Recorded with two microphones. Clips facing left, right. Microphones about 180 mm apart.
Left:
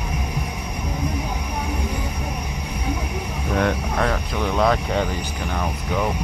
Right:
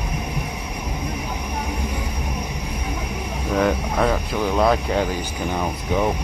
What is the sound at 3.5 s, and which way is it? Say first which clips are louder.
Speech: right 2 dB; 5° right (ahead or behind).